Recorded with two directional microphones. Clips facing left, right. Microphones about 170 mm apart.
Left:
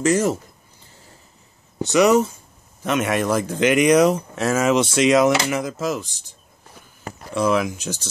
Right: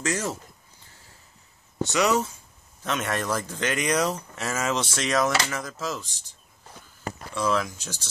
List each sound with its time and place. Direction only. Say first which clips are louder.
0.0 s speech: left 10 dB; 10° left (ahead or behind)
2.0 s speech: left 8 dB; 15° left (ahead or behind)
7.3 s speech: left 6 dB; 15° left (ahead or behind)